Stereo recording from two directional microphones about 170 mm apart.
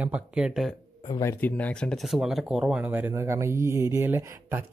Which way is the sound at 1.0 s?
20° left (ahead or behind).